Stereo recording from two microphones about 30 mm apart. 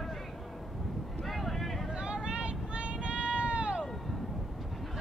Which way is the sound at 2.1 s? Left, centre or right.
Right.